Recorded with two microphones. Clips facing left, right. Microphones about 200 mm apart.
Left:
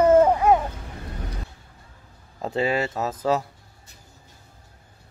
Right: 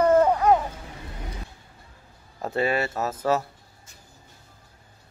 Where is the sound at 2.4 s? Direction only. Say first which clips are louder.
Left 1 dB; 20° left (ahead or behind).